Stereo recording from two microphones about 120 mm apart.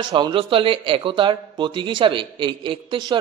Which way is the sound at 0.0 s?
45° right (ahead or behind).